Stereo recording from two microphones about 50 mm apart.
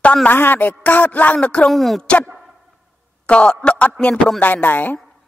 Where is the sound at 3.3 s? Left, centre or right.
Left.